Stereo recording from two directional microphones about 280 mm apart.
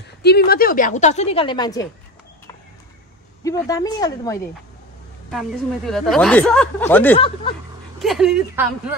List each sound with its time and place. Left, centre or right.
0.2 s a woman's voice: left; by 1.9 s centre
3.4 s speech: centre
5.3 s speech: centre
7.2 s a woman's voice: centre
8.0 s speech: centre